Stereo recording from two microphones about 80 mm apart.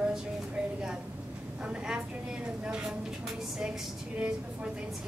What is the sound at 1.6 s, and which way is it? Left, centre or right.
A woman's voice, centre.